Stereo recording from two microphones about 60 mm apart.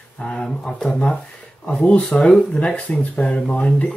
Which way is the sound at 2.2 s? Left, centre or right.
Centre.